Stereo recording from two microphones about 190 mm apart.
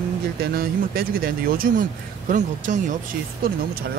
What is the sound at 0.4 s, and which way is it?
Speech, 50° right (ahead or behind).